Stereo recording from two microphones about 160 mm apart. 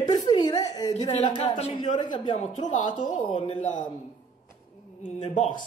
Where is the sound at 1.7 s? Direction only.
30° left (ahead or behind).